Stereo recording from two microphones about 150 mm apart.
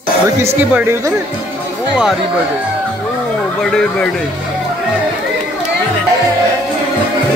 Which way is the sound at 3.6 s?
5° left (ahead or behind).